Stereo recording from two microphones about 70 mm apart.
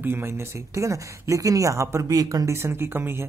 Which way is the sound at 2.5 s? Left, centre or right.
Right.